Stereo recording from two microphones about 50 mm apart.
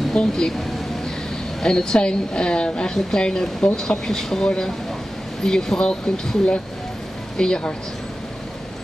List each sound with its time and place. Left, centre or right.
0.1 s speech: centre
1.6 s a woman's voice: centre